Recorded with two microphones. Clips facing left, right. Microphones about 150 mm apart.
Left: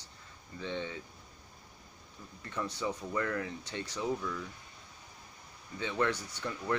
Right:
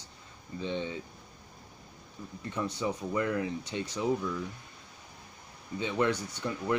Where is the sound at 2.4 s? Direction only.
20° right (ahead or behind).